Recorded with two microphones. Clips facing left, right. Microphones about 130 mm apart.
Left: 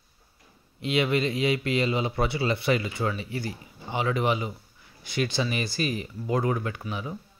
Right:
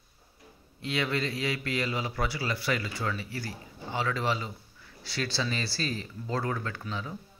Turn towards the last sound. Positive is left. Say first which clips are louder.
# left 3 dB
turn(degrees=15)  # may be behind; listen again after turning